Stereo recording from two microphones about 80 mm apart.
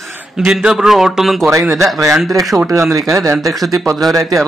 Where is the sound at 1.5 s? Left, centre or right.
Right.